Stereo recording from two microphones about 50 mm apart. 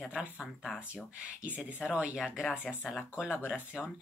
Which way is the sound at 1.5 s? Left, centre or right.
Right.